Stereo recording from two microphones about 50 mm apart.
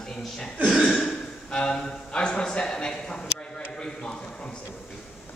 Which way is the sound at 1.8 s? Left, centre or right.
Centre.